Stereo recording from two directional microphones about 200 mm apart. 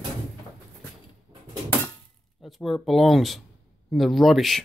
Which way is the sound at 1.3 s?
20° right (ahead or behind).